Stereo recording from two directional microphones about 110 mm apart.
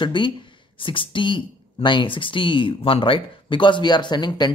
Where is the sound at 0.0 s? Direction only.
45° left (ahead or behind).